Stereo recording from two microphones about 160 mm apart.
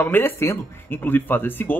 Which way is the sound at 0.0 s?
15° left (ahead or behind).